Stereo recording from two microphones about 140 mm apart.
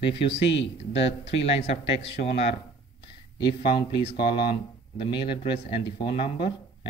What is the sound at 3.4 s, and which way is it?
A man's voice, 40° left (ahead or behind).